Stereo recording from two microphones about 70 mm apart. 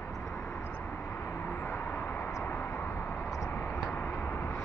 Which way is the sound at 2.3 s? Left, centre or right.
Left.